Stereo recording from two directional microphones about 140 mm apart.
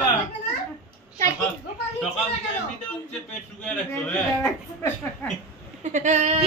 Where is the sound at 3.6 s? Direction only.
10° left (ahead or behind).